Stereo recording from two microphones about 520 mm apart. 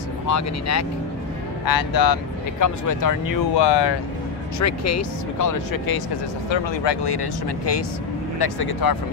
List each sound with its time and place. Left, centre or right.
0.3 s speech: left
4.6 s speech: left
6.5 s speech: left